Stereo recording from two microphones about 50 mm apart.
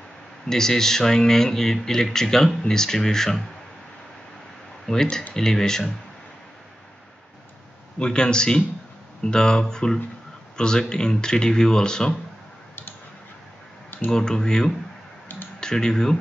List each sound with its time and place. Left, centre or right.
0.5 s speech: centre
4.9 s speech: centre
8.0 s speech: centre
14.1 s speech: centre